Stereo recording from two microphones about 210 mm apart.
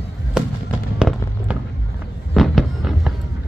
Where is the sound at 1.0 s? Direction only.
5° right (ahead or behind).